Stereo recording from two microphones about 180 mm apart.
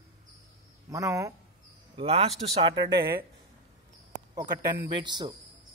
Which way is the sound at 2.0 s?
30° right (ahead or behind).